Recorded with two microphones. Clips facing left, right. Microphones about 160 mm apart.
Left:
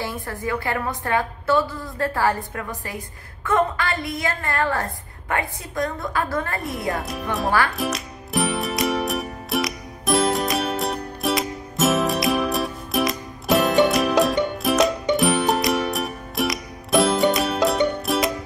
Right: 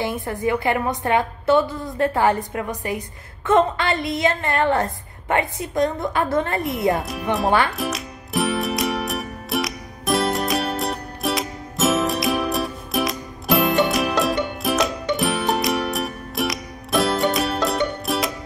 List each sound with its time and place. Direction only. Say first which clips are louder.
0.0 s a woman's voice: right 5 dB; 20° right (ahead or behind)
7.7 s music: even; centre (ahead or behind)